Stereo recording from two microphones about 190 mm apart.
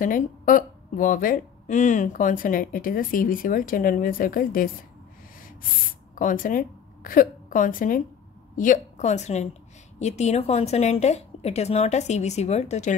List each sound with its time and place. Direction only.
0.0 s speech: 45° left (ahead or behind)
6.1 s a woman's voice: 45° left (ahead or behind)